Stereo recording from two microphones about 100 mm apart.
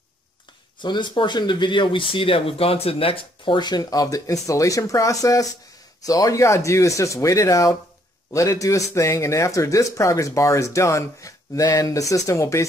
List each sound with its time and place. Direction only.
0.7 s speech: 50° left (ahead or behind); by 12.6 s 30° left (ahead or behind)